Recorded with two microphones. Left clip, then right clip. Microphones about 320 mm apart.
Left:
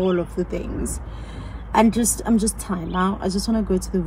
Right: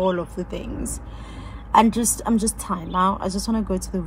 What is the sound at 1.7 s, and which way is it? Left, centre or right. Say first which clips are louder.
A woman's voice: right 1 dB; centre.